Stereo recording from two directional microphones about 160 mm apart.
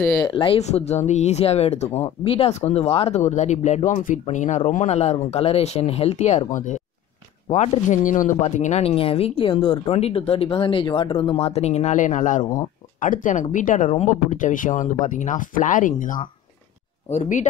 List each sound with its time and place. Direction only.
0.2 s speech: 30° left (ahead or behind); by 17.5 s 50° left (ahead or behind)